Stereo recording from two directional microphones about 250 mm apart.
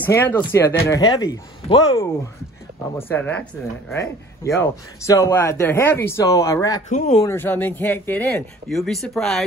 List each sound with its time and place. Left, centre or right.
0.0 s a man's voice: centre
6.9 s speech: left
7.2 s a man's voice: centre